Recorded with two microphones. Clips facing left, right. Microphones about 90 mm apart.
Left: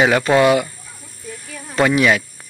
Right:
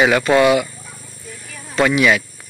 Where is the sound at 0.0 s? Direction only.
25° left (ahead or behind).